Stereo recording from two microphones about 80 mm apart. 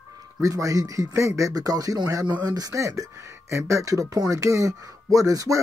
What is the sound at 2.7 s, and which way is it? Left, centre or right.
Speech, right.